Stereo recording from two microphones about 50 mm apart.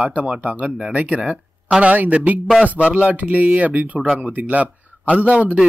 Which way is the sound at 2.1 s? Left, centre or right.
Right.